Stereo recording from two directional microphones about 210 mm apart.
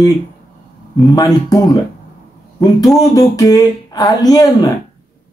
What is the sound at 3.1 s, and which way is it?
Speech, 15° left (ahead or behind).